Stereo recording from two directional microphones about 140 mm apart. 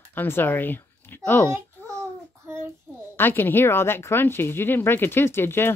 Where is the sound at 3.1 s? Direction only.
15° left (ahead or behind).